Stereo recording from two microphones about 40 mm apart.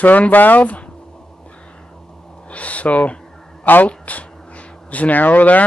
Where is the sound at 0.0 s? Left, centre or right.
Left.